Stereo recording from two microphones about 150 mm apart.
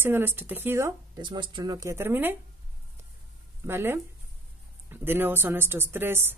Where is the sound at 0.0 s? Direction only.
15° right (ahead or behind).